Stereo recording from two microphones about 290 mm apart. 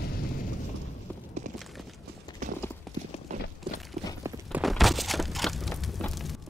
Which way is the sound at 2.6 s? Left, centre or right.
Centre.